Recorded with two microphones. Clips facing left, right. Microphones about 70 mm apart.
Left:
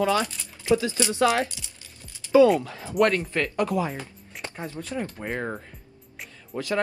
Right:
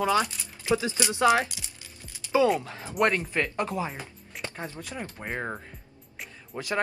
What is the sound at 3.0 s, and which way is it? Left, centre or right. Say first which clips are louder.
Speech: left 3 dB; right.